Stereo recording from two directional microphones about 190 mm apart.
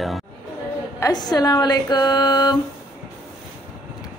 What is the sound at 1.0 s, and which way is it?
Speech, 20° left (ahead or behind).